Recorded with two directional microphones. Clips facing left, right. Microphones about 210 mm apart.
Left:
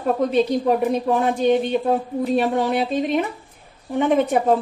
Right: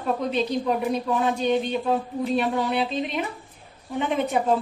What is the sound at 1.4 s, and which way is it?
Speech, 50° left (ahead or behind).